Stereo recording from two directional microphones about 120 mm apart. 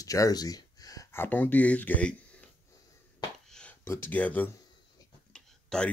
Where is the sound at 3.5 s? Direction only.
5° left (ahead or behind).